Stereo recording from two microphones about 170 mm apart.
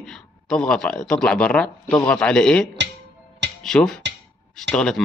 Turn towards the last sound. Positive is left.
turn(degrees=5)  # may be behind; listen again after turning